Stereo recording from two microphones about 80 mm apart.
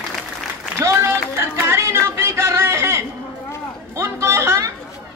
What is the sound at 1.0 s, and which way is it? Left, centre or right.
Music, right.